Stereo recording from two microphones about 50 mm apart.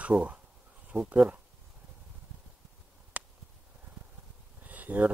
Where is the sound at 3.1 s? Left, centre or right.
Right.